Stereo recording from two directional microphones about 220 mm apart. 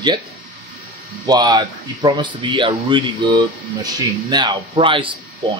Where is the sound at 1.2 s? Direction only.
20° right (ahead or behind).